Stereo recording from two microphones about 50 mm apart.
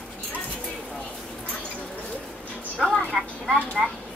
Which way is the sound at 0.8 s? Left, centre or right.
Centre.